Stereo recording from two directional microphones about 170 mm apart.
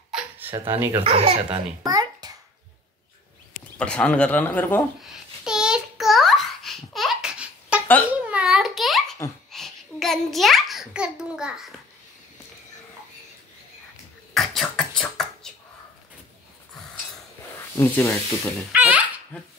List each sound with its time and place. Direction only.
0.1 s a sound: 5° right (ahead or behind)
0.7 s speech: 15° right (ahead or behind)
1.0 s speech: 35° right (ahead or behind)
1.9 s babbling: 20° right (ahead or behind)
3.7 s speech: 5° left (ahead or behind)
5.4 s babbling: 5° right (ahead or behind)
9.5 s a sound: centre (ahead or behind)
14.3 s beatboxing: centre (ahead or behind)
17.7 s speech: 15° left (ahead or behind)
18.7 s a sound: 10° right (ahead or behind)